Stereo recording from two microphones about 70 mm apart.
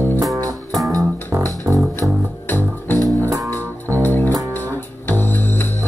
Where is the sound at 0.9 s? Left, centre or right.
Right.